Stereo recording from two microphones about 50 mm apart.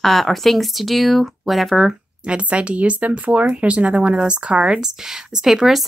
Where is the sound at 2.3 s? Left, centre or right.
Right.